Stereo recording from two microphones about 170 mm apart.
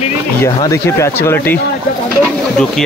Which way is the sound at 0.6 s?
20° left (ahead or behind).